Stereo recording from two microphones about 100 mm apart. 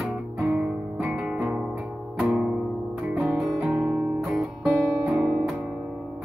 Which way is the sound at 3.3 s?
5° right (ahead or behind).